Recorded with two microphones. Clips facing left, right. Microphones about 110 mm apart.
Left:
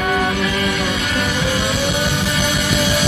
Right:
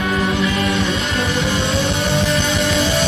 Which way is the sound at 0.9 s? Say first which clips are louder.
Even; centre (ahead or behind).